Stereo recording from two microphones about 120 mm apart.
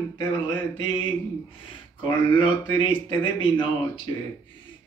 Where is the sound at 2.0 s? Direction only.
45° left (ahead or behind).